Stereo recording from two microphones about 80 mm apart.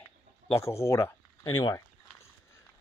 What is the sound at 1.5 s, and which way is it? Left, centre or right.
Speech, left.